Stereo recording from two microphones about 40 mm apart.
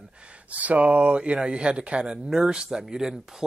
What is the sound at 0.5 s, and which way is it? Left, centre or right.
Speech, right.